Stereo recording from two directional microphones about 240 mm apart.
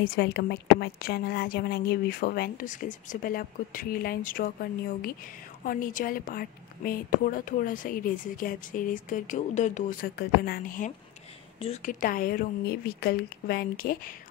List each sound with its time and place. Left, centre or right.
0.0 s a woman's voice: left